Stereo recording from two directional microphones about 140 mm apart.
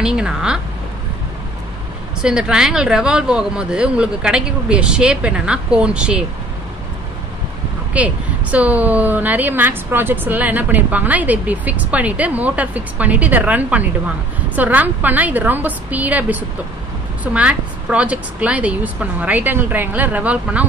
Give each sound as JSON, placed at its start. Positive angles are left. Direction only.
{"t": 0.0, "sound": "speech", "side_deg": -5}
{"t": 2.2, "sound": "a woman's voice", "side_deg": -5}
{"t": 7.9, "sound": "a woman's voice", "side_deg": -10}